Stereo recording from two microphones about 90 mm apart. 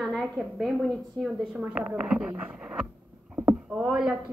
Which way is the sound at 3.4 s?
30° right (ahead or behind).